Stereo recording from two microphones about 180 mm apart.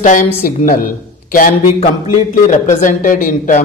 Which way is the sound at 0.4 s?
50° left (ahead or behind).